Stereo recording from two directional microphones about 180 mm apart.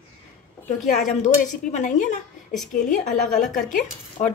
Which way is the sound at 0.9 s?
45° left (ahead or behind).